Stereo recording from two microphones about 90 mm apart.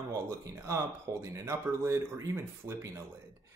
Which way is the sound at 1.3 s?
30° right (ahead or behind).